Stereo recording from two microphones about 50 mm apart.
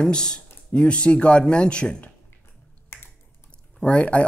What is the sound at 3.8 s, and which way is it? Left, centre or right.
Speech, left.